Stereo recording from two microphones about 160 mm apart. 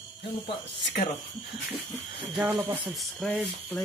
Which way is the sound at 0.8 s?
90° left.